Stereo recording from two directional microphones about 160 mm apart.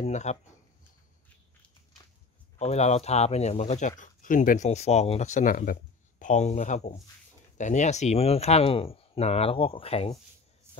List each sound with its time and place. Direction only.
0.0 s speech: 45° left (ahead or behind)
2.6 s speech: 45° left (ahead or behind)
10.7 s music: 15° right (ahead or behind)